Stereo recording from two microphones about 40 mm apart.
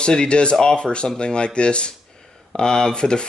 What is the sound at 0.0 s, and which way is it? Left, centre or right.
Speech, left.